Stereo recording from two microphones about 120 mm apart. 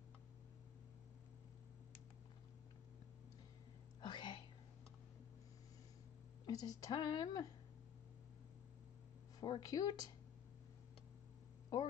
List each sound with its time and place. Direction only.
4.0 s whispering: 40° left (ahead or behind)
6.4 s speech: 30° left (ahead or behind)
9.4 s speech: 35° left (ahead or behind)